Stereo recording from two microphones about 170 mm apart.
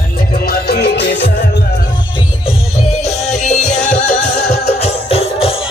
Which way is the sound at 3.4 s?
45° left (ahead or behind).